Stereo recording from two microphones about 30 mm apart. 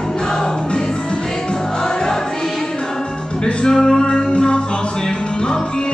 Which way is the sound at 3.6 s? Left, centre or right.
Centre.